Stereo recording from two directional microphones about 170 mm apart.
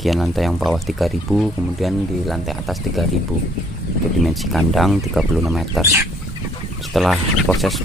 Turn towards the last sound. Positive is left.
turn(degrees=0)  # may be behind; listen again after turning